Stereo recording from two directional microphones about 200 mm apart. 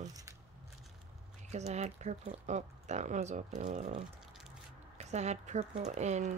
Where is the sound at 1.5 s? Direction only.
35° right (ahead or behind).